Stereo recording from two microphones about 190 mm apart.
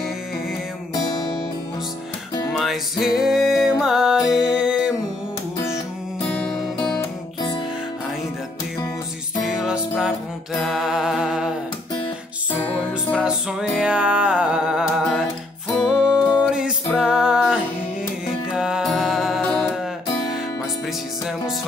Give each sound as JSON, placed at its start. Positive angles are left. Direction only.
{"t": 0.9, "sound": "music", "side_deg": 20}
{"t": 2.5, "sound": "music", "side_deg": 0}
{"t": 6.2, "sound": "music", "side_deg": 0}
{"t": 9.5, "sound": "music", "side_deg": -5}
{"t": 13.2, "sound": "music", "side_deg": -5}